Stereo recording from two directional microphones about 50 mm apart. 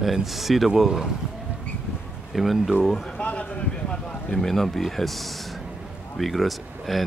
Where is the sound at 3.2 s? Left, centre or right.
Left.